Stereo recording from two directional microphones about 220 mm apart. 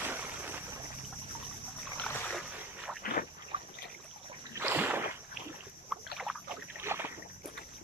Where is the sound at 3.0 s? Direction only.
40° left (ahead or behind).